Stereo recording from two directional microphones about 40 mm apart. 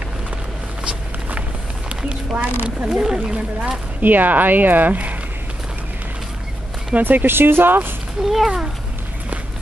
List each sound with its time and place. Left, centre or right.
2.0 s speech: right
3.0 s speech: right
4.0 s speech: right
7.0 s speech: right
8.2 s speech: centre